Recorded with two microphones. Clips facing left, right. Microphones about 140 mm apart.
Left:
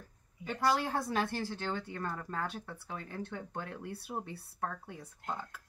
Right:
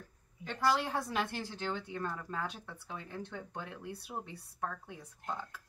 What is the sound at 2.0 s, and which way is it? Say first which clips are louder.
Speech: left 1 dB; 5° left (ahead or behind).